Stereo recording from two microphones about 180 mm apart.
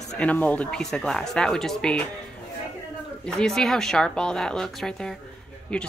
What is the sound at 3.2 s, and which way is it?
Speech, 5° left (ahead or behind).